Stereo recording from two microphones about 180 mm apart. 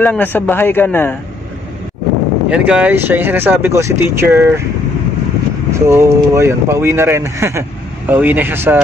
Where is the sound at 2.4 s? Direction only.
5° right (ahead or behind).